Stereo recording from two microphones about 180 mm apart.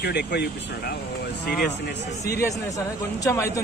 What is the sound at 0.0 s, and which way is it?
Speech, 65° left (ahead or behind).